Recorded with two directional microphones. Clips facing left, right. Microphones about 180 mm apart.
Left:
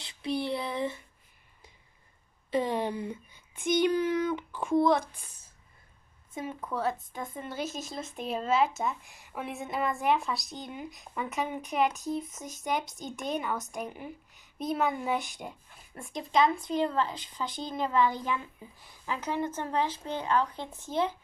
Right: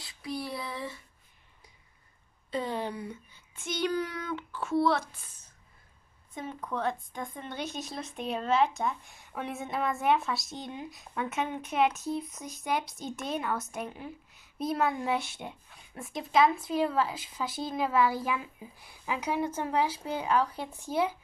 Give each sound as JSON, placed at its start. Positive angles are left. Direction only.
{"t": 0.0, "sound": "a sound", "side_deg": 25}
{"t": 2.5, "sound": "speech", "side_deg": 20}
{"t": 6.3, "sound": "speech", "side_deg": 5}